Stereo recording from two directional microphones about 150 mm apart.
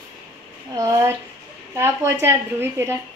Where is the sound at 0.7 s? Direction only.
20° right (ahead or behind).